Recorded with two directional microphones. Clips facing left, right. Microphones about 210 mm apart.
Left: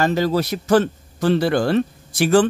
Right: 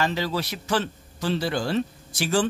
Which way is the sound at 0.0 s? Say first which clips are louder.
Left 7 dB; 45° left (ahead or behind).